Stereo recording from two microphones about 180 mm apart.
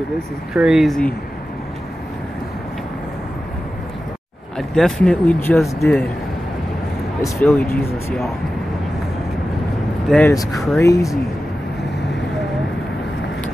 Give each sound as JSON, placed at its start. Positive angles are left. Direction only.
{"t": 0.6, "sound": "speech", "side_deg": -5}
{"t": 4.6, "sound": "speech", "side_deg": 0}
{"t": 7.2, "sound": "speech", "side_deg": 10}
{"t": 10.0, "sound": "speech", "side_deg": 5}
{"t": 10.8, "sound": "speech", "side_deg": 15}